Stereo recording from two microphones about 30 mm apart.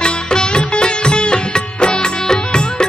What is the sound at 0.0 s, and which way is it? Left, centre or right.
Music, left.